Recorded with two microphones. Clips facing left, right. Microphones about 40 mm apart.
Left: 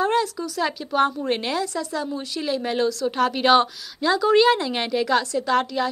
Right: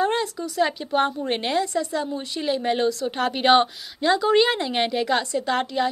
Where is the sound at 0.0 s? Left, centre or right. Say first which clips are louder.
Left 2 dB; centre.